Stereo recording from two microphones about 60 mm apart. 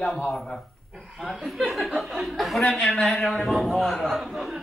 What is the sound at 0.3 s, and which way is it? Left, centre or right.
A man's voice, centre.